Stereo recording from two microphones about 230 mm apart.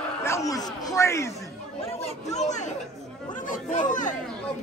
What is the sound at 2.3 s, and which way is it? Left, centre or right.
Speech, left.